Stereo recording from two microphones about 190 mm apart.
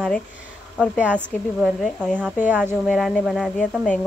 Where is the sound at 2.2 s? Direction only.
10° right (ahead or behind).